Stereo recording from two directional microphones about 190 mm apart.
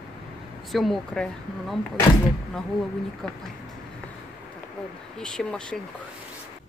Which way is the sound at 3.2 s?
5° left (ahead or behind).